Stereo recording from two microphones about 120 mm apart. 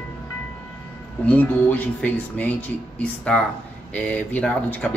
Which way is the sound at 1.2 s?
15° left (ahead or behind).